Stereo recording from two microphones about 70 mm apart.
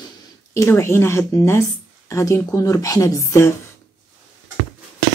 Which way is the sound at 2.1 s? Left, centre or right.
Left.